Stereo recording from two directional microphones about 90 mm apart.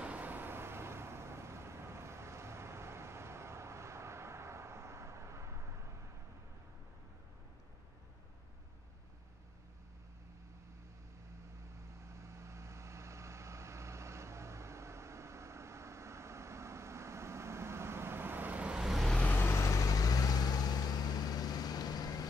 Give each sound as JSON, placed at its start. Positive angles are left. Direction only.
{"t": 0.0, "sound": "vehicle", "side_deg": -15}
{"t": 12.1, "sound": "vehicle", "side_deg": -35}
{"t": 19.1, "sound": "vehicle", "side_deg": 20}